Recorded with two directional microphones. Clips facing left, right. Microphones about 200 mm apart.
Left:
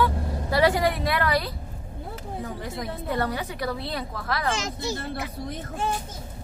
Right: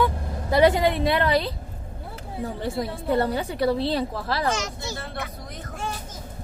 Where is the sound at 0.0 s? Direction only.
20° right (ahead or behind).